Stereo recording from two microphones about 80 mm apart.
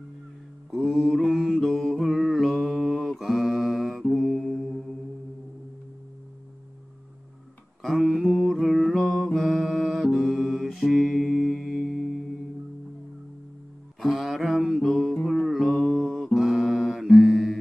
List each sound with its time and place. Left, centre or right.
0.7 s mantra: centre
7.8 s mantra: centre
14.0 s mantra: centre
16.3 s music: centre